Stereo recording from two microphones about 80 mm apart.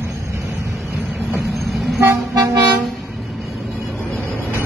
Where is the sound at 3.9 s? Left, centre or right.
Centre.